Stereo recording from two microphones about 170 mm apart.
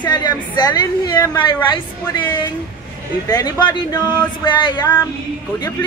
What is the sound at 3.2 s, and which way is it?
A woman's voice, 20° left (ahead or behind).